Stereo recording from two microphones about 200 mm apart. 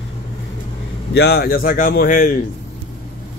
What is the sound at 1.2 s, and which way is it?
Speech, 55° left (ahead or behind).